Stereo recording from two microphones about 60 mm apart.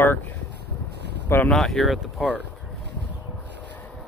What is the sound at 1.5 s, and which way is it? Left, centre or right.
Speech, centre.